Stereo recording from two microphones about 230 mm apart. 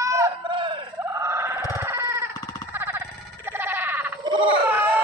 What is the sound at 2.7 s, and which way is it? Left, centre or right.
Sheep, centre.